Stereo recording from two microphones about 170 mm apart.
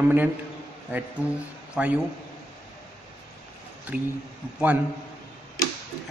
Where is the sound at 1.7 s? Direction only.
10° right (ahead or behind).